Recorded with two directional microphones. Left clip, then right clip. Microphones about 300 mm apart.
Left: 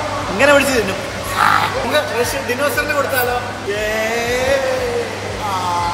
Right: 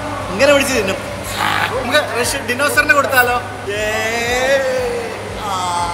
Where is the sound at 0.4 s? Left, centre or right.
Centre.